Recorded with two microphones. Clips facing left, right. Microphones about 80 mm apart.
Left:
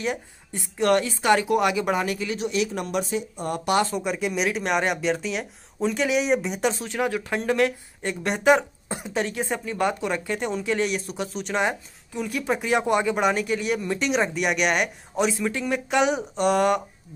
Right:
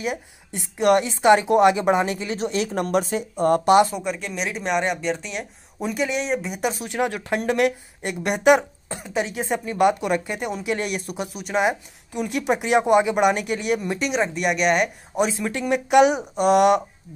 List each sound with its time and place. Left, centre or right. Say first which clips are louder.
0.7 s a woman's voice: right 3 dB; centre; by 3.6 s right
3.9 s speech: left 2 dB; centre
5.8 s speech: left 1 dB; centre
6.0 s speech: left 4 dB; centre
6.8 s speech: right 1 dB; centre
10.8 s speech: left 2 dB; right
11.3 s speech: right 3 dB; centre
13.9 s speech: even; centre
15.2 s speech: left 5 dB; right
16.1 s speech: right 3 dB; centre